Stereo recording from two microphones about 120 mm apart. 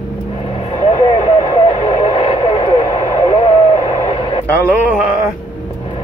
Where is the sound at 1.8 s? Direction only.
40° left (ahead or behind).